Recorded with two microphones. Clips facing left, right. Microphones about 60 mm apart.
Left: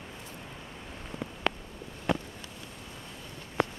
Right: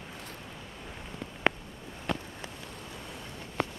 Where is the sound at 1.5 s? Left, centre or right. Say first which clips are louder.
Right 3 dB; right.